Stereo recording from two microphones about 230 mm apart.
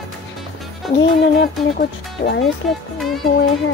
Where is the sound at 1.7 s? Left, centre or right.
Left.